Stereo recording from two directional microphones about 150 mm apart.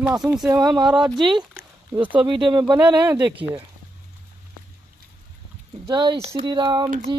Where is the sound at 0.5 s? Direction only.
25° right (ahead or behind).